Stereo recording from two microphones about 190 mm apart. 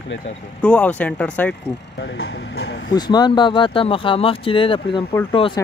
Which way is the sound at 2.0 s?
75° left (ahead or behind).